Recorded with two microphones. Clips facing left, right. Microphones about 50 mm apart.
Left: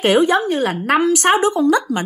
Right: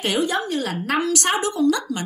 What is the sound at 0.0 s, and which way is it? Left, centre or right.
A woman's voice, left.